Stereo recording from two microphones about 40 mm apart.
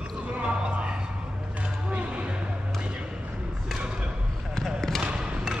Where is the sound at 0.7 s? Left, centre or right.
Right.